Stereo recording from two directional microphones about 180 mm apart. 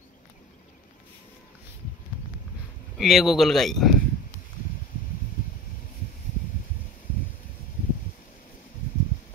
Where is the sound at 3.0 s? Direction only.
Centre (ahead or behind).